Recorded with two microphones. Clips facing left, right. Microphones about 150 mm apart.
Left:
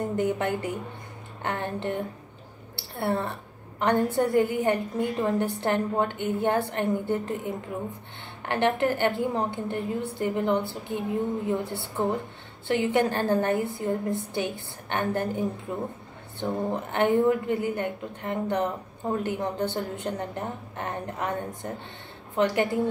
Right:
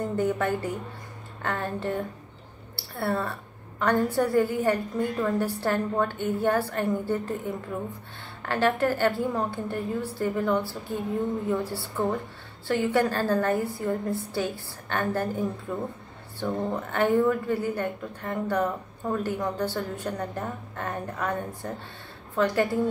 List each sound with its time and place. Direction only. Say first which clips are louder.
0.1 s a woman's voice: even; 20° left (ahead or behind)